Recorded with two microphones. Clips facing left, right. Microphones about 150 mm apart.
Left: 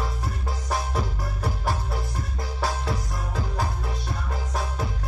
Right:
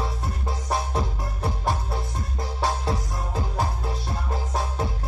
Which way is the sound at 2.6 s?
20° right (ahead or behind).